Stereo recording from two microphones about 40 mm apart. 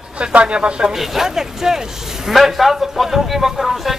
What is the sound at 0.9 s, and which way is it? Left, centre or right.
Speech, centre.